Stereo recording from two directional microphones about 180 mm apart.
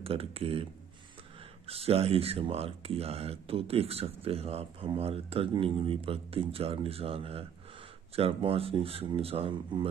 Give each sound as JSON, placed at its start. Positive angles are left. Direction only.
{"t": 0.0, "sound": "speech", "side_deg": -30}
{"t": 1.7, "sound": "speech", "side_deg": -35}